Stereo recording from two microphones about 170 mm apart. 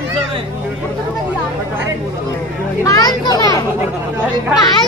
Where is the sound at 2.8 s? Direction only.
25° left (ahead or behind).